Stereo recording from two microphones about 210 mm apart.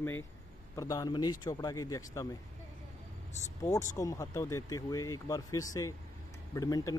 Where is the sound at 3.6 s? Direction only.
15° left (ahead or behind).